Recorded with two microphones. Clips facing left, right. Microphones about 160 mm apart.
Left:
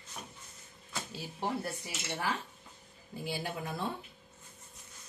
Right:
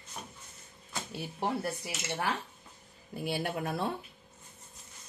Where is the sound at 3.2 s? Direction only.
65° right (ahead or behind).